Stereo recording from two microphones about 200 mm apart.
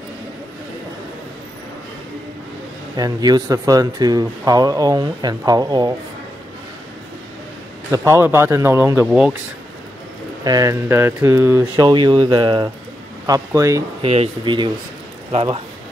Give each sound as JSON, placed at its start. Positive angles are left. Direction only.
{"t": 3.0, "sound": "speech", "side_deg": -20}
{"t": 7.9, "sound": "speech", "side_deg": -15}
{"t": 10.4, "sound": "speech", "side_deg": -15}
{"t": 14.0, "sound": "speech", "side_deg": -30}